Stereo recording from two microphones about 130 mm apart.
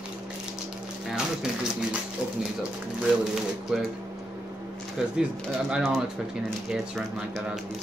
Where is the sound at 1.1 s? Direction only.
5° right (ahead or behind).